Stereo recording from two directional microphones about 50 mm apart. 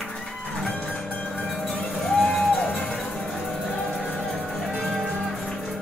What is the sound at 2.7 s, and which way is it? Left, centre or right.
Music, left.